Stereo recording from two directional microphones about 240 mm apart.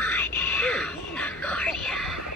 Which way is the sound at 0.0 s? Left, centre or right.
Centre.